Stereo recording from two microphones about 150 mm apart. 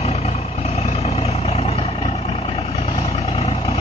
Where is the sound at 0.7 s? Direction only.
45° left (ahead or behind).